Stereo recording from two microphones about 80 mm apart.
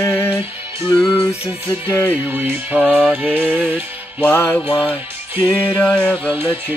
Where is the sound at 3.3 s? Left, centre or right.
Centre.